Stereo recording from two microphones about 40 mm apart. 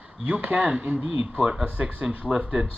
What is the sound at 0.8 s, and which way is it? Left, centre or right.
Speech, right.